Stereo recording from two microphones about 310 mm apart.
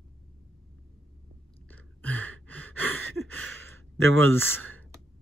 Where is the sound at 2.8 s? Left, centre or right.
Right.